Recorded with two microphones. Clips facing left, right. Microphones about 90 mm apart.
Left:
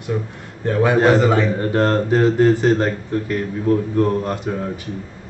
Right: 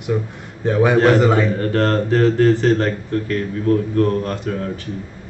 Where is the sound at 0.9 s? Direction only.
15° left (ahead or behind).